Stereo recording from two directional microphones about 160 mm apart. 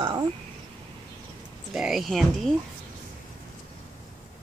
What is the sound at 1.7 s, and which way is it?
Speech, 5° right (ahead or behind).